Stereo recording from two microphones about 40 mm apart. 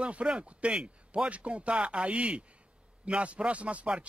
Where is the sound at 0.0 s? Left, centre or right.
Right.